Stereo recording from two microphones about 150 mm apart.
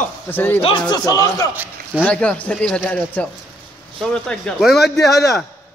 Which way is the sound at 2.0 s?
10° left (ahead or behind).